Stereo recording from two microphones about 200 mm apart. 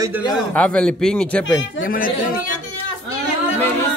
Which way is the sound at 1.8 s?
45° left (ahead or behind).